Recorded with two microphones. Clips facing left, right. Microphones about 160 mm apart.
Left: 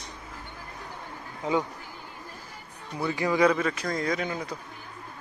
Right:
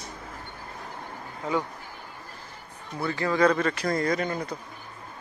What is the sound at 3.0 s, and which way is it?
Speech, 15° left (ahead or behind).